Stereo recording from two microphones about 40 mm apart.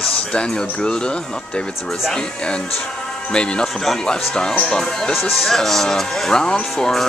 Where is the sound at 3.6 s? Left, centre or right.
Centre.